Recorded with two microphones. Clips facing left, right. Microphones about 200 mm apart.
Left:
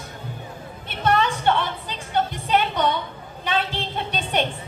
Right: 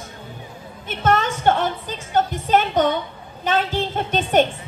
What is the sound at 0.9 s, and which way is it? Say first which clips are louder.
Music: right 1 dB; 45° right (ahead or behind).